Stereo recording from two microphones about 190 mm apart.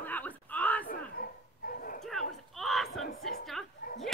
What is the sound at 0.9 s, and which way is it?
Bow-wow, 50° left (ahead or behind).